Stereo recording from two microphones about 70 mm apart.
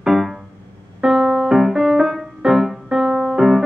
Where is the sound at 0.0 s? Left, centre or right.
Centre.